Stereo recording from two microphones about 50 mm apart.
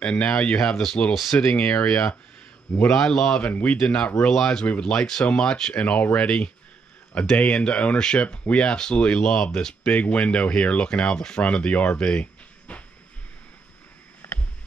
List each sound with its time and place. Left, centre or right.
0.0 s speech: left
0.6 s speech: centre
1.3 s speech: left
2.9 s speech: centre
3.3 s speech: left
5.8 s speech: left
9.2 s speech: centre
9.9 s speech: left
12.0 s a sound: left
14.2 s a sound: left